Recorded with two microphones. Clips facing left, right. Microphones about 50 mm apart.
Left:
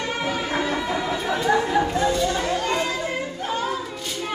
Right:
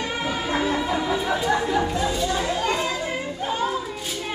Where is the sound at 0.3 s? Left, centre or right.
Centre.